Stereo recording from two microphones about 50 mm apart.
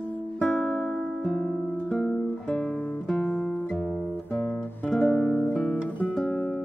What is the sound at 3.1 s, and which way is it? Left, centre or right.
Music, centre.